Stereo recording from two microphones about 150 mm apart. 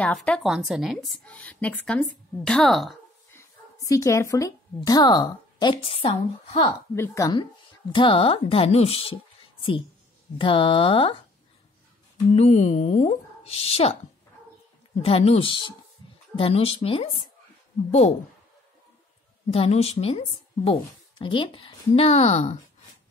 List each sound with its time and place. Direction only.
0.0 s a woman's voice: 5° left (ahead or behind)
3.3 s a sound: 20° left (ahead or behind)
4.7 s a woman's voice: 25° left (ahead or behind)
7.0 s speech: 20° left (ahead or behind)
7.9 s a woman's voice: 35° left (ahead or behind)
10.3 s a woman's voice: 35° left (ahead or behind)
12.3 s speech: 50° left (ahead or behind)
15.0 s a woman's voice: 40° left (ahead or behind)
19.5 s speech: 40° left (ahead or behind)